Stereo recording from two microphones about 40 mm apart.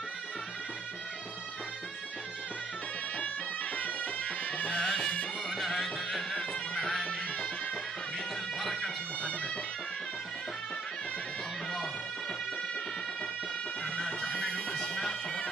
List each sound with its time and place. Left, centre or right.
3.7 s music: left
4.7 s music: centre
5.5 s music: centre
7.1 s music: left
8.8 s bagpipes: left
13.9 s music: centre
14.3 s bagpipes: left